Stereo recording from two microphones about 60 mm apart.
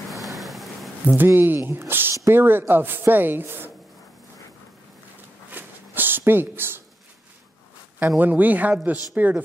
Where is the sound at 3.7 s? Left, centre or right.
Centre.